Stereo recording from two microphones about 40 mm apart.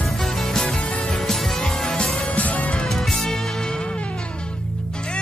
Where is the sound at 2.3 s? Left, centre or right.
Left.